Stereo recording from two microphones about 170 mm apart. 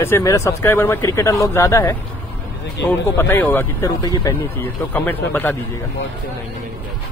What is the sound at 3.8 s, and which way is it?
Speech, 25° left (ahead or behind).